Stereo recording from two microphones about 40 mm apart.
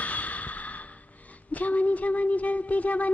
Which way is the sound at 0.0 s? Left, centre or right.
Left.